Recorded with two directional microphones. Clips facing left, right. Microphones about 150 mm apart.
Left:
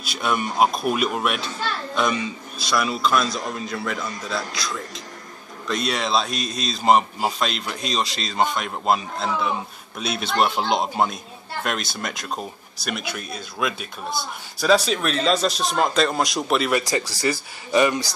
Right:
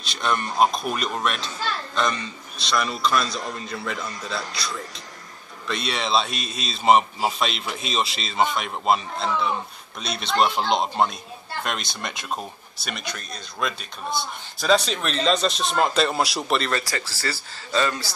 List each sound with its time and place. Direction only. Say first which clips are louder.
0.0 s a man's voice: left 1 dB; 5° left (ahead or behind)
16.8 s speech: left 6 dB; 15° left (ahead or behind)